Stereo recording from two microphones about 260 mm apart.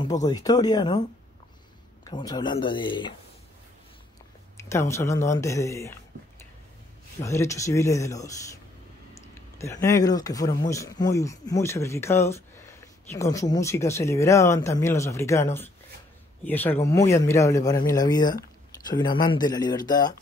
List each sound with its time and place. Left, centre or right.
0.0 s speech: centre
2.0 s speech: centre
4.6 s speech: centre
7.2 s speech: centre